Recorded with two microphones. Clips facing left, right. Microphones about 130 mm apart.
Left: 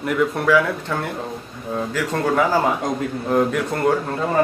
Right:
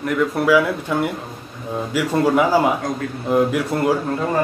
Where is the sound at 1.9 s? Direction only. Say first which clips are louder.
Right 5 dB; 10° right (ahead or behind).